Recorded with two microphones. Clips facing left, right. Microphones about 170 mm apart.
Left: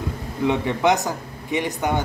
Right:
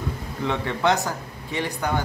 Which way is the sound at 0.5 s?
15° left (ahead or behind).